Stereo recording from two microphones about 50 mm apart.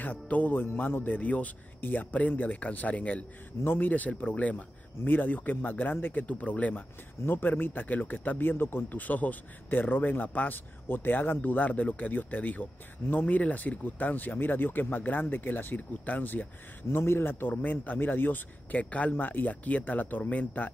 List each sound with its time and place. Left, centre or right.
0.0 s speech: left
3.6 s speech: left
6.2 s speech: left
7.2 s speech: left
16.9 s speech: left